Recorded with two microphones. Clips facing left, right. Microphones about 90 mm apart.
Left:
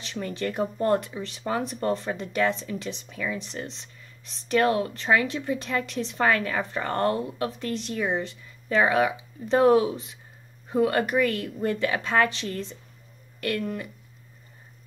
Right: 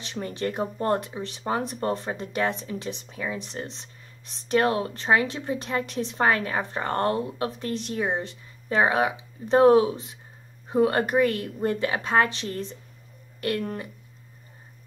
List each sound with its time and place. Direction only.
0.0 s a woman's voice: 25° right (ahead or behind)